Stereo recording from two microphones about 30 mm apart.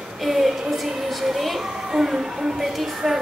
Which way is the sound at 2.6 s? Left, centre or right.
Centre.